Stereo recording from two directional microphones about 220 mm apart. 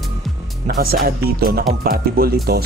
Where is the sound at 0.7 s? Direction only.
40° right (ahead or behind).